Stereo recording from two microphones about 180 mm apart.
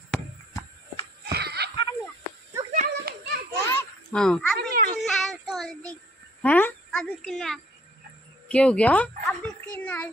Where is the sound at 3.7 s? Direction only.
5° left (ahead or behind).